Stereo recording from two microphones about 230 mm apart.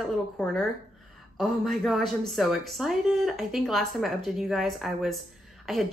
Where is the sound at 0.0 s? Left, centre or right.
Centre.